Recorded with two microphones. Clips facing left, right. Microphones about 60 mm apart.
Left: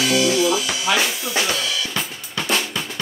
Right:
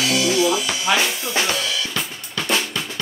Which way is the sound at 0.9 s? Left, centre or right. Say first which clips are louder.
Right 1 dB; centre.